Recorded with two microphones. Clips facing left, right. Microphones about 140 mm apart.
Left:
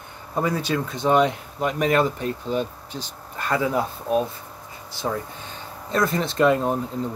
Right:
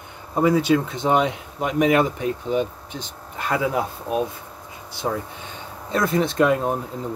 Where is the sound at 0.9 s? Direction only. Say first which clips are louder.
Left 1 dB; 20° right (ahead or behind).